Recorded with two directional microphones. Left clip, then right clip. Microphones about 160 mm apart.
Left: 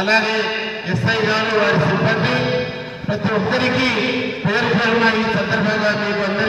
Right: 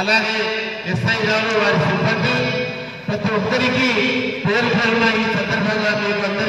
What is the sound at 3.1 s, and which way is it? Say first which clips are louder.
A man's voice: left 1 dB; 25° left (ahead or behind).